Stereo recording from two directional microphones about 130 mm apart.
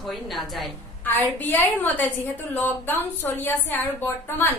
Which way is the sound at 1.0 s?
15° left (ahead or behind).